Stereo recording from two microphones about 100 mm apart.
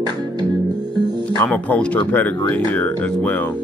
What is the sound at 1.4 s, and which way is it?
Speech, 15° left (ahead or behind).